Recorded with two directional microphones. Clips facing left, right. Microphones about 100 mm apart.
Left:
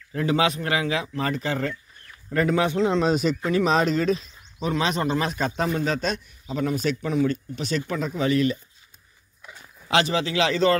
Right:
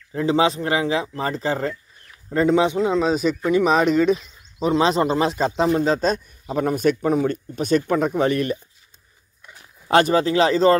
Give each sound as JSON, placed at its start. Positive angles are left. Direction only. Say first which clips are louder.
{"t": 0.1, "sound": "a man's voice", "louder": "right 4 dB", "side_deg": -25}
{"t": 2.8, "sound": "speech", "louder": "right 2 dB", "side_deg": -5}
{"t": 4.6, "sound": "a man's voice", "louder": "right 6 dB", "side_deg": -30}
{"t": 6.4, "sound": "speech", "louder": "right 5 dB", "side_deg": -50}
{"t": 9.8, "sound": "speech", "louder": "right 6 dB", "side_deg": -45}